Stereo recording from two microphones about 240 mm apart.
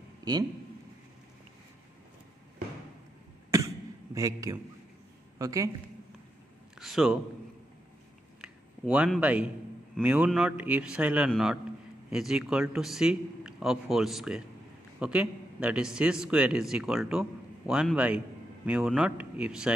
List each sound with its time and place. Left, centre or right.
0.2 s a man's voice: centre
3.5 s cough: centre
5.4 s speech: centre
6.8 s a man's voice: centre
8.4 s a sound: centre
9.9 s a man's voice: centre